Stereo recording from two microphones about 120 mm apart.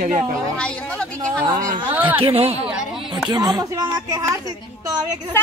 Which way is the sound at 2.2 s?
55° right (ahead or behind).